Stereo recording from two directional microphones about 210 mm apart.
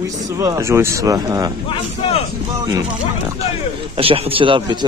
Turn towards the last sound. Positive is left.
turn(degrees=-25)  # may be behind; listen again after turning